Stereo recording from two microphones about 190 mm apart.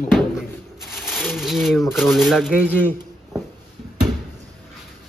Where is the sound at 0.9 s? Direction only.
Centre (ahead or behind).